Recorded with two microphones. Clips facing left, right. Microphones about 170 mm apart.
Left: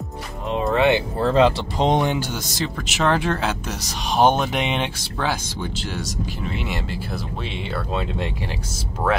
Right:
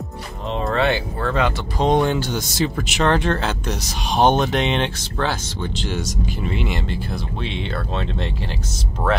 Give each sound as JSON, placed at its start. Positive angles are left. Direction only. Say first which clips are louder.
{"t": 0.7, "sound": "speech", "louder": "left 3 dB", "side_deg": 15}
{"t": 1.2, "sound": "speech", "louder": "left 6 dB", "side_deg": 30}
{"t": 2.5, "sound": "speech", "louder": "right 4 dB", "side_deg": 0}